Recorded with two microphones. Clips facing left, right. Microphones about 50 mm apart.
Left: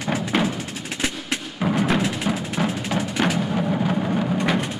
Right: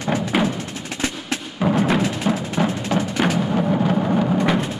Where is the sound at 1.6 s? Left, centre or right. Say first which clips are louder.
Right 3 dB; centre.